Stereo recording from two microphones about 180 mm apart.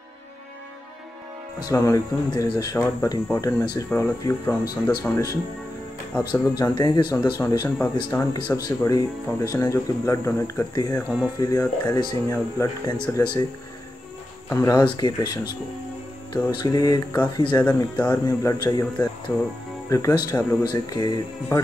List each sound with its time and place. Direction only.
1.7 s speech: 20° left (ahead or behind)
14.5 s speech: 20° left (ahead or behind)
16.4 s speech: 20° left (ahead or behind)
17.6 s speech: 10° left (ahead or behind)